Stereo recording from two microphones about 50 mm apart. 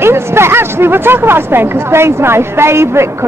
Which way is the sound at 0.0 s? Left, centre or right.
Right.